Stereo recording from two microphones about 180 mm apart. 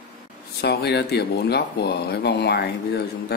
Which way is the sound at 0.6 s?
65° left (ahead or behind).